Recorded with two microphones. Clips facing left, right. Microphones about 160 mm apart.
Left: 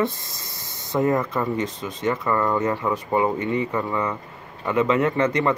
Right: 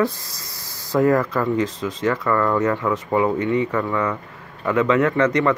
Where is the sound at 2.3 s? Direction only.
25° left (ahead or behind).